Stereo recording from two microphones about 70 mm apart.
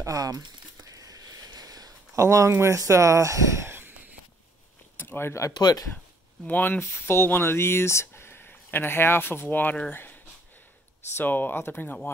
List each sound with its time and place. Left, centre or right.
0.0 s a sound: right
2.1 s speech: right
4.9 s a sound: left
5.5 s speech: left
6.4 s speech: left
11.1 s speech: left